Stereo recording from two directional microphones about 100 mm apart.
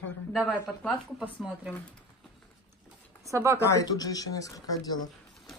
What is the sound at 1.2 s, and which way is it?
Speech, 15° right (ahead or behind).